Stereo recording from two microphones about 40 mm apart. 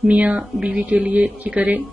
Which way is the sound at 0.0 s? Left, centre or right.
Right.